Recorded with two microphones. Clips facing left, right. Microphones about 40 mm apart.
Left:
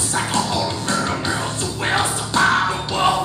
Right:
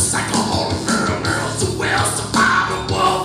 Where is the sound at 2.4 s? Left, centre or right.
Left.